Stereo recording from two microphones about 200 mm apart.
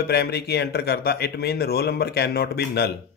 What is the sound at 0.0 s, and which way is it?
Speech, 55° left (ahead or behind).